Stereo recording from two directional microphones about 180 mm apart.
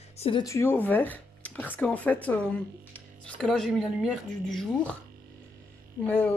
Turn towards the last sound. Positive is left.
turn(degrees=10)  # may be behind; listen again after turning